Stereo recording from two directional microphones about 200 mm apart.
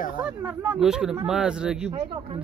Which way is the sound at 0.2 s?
5° right (ahead or behind).